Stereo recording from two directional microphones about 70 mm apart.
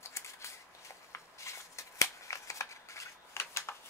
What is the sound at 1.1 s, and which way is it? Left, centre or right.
Shuffling cards, left.